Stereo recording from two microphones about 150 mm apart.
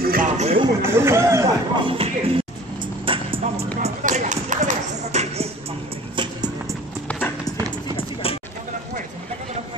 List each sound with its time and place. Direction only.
0.0 s music: 70° right (ahead or behind)
0.4 s music: 40° right (ahead or behind)
0.8 s speech: 15° right (ahead or behind)
1.8 s music: 35° right (ahead or behind)
3.8 s a sound: 50° right (ahead or behind)
6.1 s music: 25° right (ahead or behind)
7.9 s clip-clop: 40° left (ahead or behind)